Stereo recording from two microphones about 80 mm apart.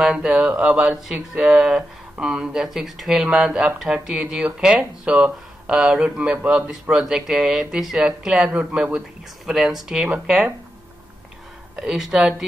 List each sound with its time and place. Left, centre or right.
0.0 s speech: centre
9.5 s speech: centre
11.7 s speech: centre